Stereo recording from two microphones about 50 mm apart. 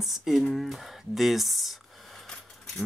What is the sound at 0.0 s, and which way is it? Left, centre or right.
Speech, centre.